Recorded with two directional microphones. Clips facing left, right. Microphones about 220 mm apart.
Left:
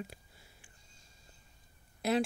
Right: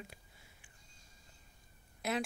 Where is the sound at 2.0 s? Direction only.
35° left (ahead or behind).